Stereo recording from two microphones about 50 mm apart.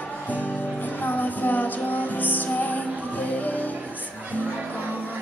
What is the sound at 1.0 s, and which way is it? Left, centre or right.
Music, left.